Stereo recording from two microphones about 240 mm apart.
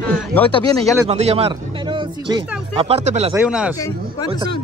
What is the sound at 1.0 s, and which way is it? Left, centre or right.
Speech, right.